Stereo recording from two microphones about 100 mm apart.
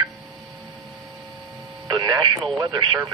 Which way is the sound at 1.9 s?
45° right (ahead or behind).